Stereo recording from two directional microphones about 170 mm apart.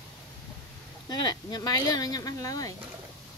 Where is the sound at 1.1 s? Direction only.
25° left (ahead or behind).